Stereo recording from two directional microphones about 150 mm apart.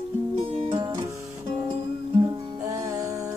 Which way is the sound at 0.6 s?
35° right (ahead or behind).